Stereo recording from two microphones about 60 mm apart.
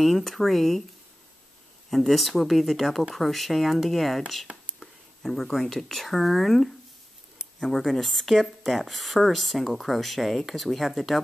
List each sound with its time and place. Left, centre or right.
0.0 s speech: centre
1.9 s speech: centre